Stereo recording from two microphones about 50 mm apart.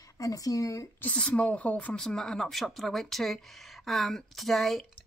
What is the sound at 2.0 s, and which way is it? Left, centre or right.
A woman's voice, centre.